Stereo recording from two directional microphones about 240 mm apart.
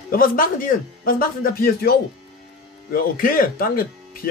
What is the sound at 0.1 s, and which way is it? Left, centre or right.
Speech, left.